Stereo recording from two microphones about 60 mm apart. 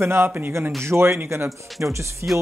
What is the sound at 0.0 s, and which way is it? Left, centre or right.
Speech, right.